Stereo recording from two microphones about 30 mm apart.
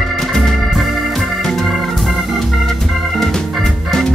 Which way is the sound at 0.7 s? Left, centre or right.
Centre.